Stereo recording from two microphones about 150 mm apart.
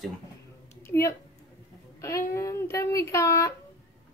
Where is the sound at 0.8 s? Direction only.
20° left (ahead or behind).